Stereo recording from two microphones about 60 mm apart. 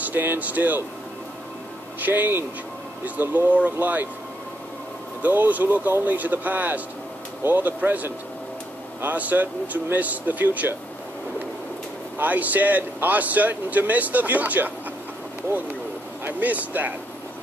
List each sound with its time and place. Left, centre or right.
0.0 s speech: right
2.0 s speech: right
5.2 s speech: right
12.2 s speech: right
16.3 s speech: right